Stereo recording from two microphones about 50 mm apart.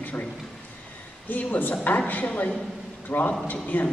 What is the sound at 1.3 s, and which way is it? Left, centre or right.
A man's voice, left.